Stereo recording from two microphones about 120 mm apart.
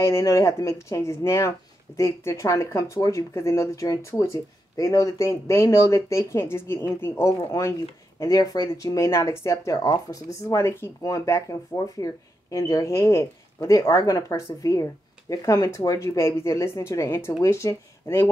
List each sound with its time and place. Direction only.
0.0 s speech: 25° left (ahead or behind)
7.3 s speech: 30° left (ahead or behind)